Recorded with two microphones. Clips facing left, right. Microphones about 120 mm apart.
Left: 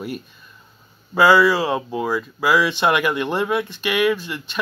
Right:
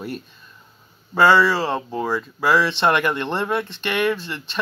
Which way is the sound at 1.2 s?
10° left (ahead or behind).